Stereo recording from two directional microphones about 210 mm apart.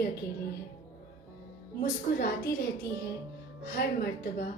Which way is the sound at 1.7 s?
50° left (ahead or behind).